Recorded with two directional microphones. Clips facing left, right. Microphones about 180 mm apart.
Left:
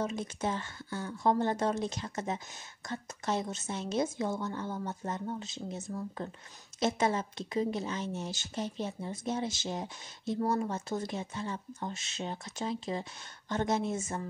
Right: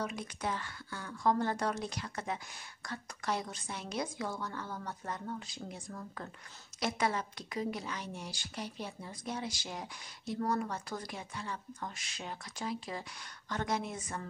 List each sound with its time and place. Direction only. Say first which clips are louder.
0.0 s speech: left 4 dB; 25° left (ahead or behind)